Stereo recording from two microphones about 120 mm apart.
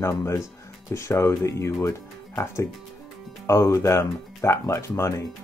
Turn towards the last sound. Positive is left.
turn(degrees=25)  # may be behind; listen again after turning